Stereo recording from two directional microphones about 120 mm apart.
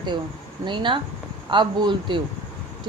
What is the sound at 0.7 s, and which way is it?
Speech, 40° right (ahead or behind).